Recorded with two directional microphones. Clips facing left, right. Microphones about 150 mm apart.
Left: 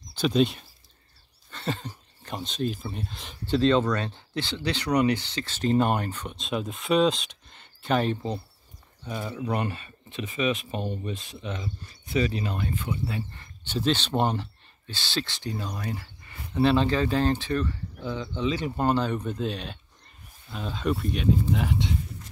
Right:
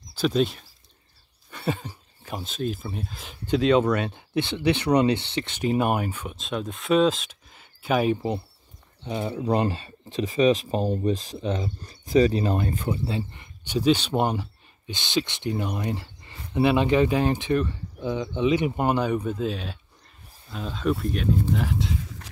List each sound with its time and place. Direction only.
0.1 s speech: centre (ahead or behind); by 5.6 s 25° right (ahead or behind)
5.6 s speech: 10° right (ahead or behind)
9.0 s speech: 20° right (ahead or behind); by 13.0 s 40° right (ahead or behind)
13.3 s speech: 15° right (ahead or behind)
21.9 s a sound: 90° right